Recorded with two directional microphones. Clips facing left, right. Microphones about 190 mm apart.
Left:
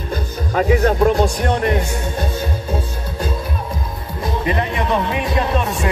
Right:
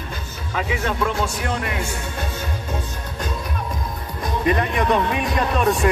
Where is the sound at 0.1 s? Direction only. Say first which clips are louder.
Left 10 dB; 40° left (ahead or behind).